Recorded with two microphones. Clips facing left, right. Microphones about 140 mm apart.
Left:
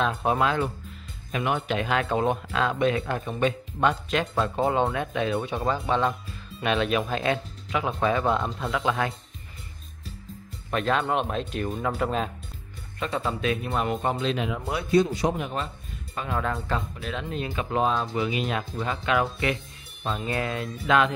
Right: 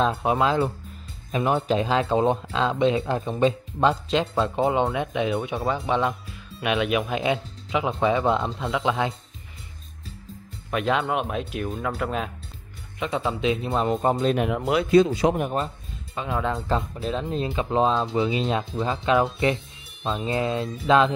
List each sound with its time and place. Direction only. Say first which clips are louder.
0.2 s speech: right 2 dB; 15° right (ahead or behind)
1.3 s speech: right 4 dB; 35° right (ahead or behind)
10.7 s speech: right 1 dB; 10° right (ahead or behind)
13.0 s speech: right 3 dB; 15° right (ahead or behind); by 14.6 s 55° right (ahead or behind)
14.6 s speech: right 6 dB; 90° right
15.3 s a man's voice: right 5 dB; 45° right (ahead or behind)
16.2 s speech: right 2 dB; 15° right (ahead or behind)